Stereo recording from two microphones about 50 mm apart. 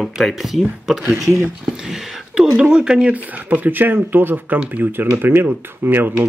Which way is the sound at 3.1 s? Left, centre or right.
Right.